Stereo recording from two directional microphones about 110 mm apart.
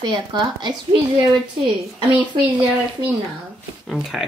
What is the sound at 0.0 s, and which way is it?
Speech, 40° right (ahead or behind).